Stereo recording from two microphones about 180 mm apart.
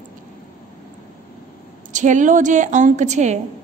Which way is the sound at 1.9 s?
45° right (ahead or behind).